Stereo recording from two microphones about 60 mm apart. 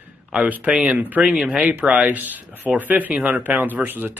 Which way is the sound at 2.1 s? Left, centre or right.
Right.